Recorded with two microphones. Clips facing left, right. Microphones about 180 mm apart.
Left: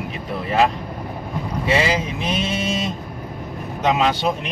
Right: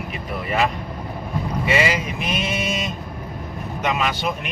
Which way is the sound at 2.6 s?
15° right (ahead or behind).